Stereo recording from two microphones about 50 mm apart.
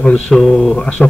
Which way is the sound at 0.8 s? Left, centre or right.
Centre.